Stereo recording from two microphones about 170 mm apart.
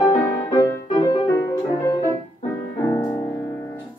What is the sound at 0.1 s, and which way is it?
Music, 25° left (ahead or behind).